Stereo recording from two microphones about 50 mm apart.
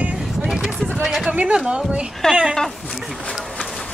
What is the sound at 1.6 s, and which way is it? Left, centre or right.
Speech, centre.